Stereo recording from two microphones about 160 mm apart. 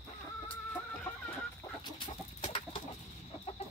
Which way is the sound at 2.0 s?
35° left (ahead or behind).